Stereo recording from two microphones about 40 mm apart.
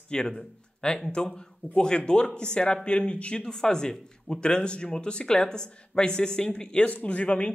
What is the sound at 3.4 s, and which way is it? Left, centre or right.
Speech, centre.